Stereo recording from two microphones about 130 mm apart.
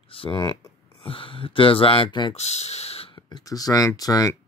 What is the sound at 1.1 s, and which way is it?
Speech, 45° left (ahead or behind).